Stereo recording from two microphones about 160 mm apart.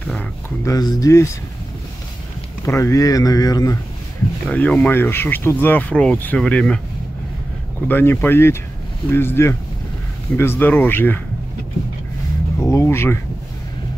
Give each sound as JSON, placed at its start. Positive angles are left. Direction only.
{"t": 0.0, "sound": "speech", "side_deg": 10}
{"t": 0.7, "sound": "speech", "side_deg": 25}
{"t": 2.6, "sound": "speech", "side_deg": 20}
{"t": 4.5, "sound": "speech", "side_deg": 10}
{"t": 7.9, "sound": "speech", "side_deg": 10}
{"t": 12.5, "sound": "a sound", "side_deg": 15}